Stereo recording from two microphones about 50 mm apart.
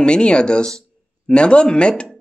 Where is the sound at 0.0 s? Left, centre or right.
Centre.